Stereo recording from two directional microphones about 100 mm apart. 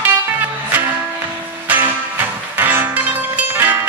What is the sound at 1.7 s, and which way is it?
Music, 20° right (ahead or behind).